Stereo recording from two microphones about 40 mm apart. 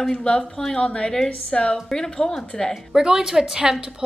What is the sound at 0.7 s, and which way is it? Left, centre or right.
A woman's voice, left.